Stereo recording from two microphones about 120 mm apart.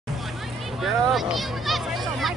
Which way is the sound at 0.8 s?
Centre (ahead or behind).